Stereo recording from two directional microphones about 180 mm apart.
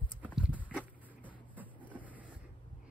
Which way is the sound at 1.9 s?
10° right (ahead or behind).